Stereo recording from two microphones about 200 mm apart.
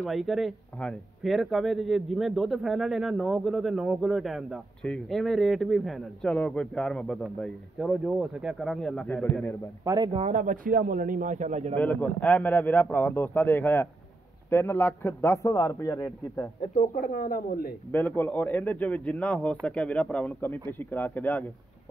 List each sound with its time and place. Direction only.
0.0 s speech: centre (ahead or behind)
9.8 s speech: 20° right (ahead or behind)
10.2 s speech: 40° right (ahead or behind)
11.7 s a man's voice: 10° left (ahead or behind)
16.7 s speech: 40° left (ahead or behind)
17.9 s a man's voice: 10° left (ahead or behind)